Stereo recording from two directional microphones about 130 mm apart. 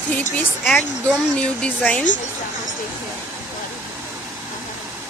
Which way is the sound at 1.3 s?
10° left (ahead or behind).